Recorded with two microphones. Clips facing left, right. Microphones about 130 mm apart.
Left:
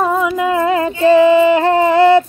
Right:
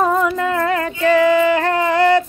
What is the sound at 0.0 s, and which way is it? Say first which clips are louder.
Music: left 1 dB; 5° left (ahead or behind).